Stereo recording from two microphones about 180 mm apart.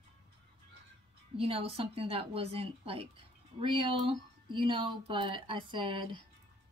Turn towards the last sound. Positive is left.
turn(degrees=-30)  # may be behind; listen again after turning